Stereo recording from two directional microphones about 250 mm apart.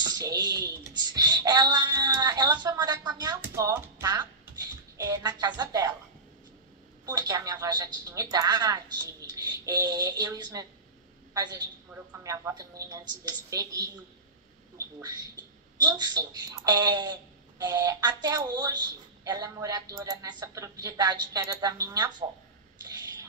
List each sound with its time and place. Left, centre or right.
0.0 s typing: centre
7.1 s a woman's voice: centre